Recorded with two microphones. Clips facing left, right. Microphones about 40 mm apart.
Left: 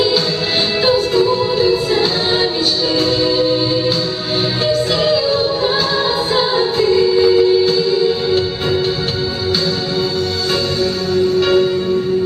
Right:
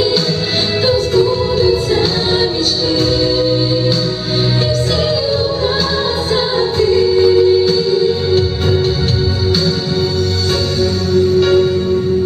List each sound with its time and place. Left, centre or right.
0.8 s music: centre
3.3 s music: centre
5.0 s music: centre
11.1 s music: centre